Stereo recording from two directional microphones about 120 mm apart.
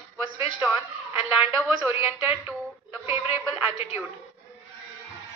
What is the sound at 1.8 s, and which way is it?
A man's voice, 15° right (ahead or behind).